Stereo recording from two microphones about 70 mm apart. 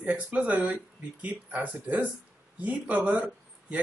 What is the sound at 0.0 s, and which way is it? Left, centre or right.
Speech, right.